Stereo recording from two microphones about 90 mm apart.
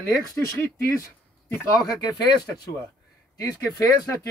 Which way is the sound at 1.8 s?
50° left (ahead or behind).